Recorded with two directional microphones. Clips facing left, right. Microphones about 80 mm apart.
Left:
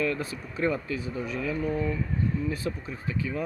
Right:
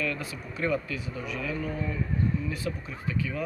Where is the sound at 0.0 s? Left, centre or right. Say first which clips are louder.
Left 3 dB; left.